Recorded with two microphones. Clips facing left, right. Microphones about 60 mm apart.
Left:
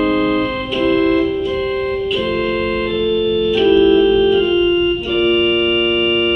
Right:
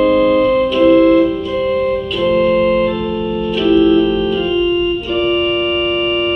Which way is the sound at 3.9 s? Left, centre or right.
Right.